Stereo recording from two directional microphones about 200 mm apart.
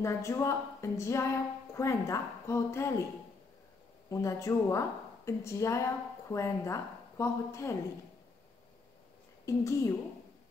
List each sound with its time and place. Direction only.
0.0 s a woman's voice: 15° left (ahead or behind)
4.1 s a woman's voice: 15° left (ahead or behind)
9.5 s a woman's voice: 15° left (ahead or behind)